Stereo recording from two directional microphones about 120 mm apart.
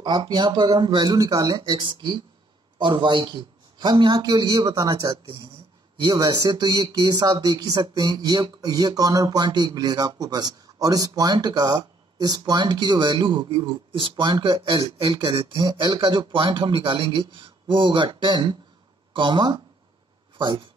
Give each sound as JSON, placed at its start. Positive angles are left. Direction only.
{"t": 0.0, "sound": "speech", "side_deg": -35}